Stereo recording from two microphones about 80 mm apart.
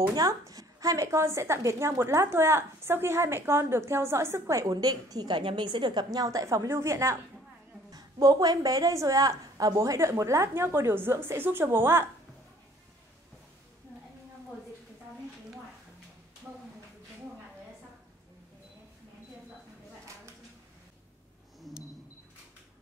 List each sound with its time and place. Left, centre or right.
0.0 s a woman's voice: right
0.3 s a woman's voice: right
7.9 s a woman's voice: right